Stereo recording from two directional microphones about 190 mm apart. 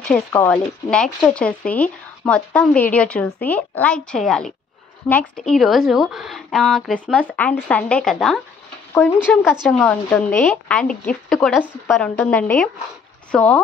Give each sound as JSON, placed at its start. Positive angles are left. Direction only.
{"t": 0.0, "sound": "speech", "side_deg": 10}
{"t": 9.4, "sound": "speech", "side_deg": 0}